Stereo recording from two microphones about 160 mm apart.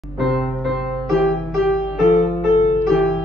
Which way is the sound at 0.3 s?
Centre (ahead or behind).